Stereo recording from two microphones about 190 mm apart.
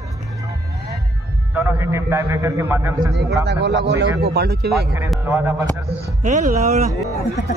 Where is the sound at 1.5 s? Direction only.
10° right (ahead or behind).